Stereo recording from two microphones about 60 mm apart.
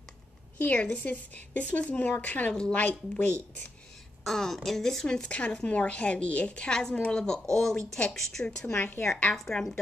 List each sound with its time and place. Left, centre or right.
0.6 s a woman's voice: left
2.5 s a woman's voice: centre
4.2 s a woman's voice: centre
5.0 s a woman's voice: centre
8.7 s a woman's voice: left
9.3 s a woman's voice: centre